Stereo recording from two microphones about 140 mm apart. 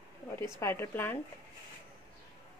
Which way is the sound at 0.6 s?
20° left (ahead or behind).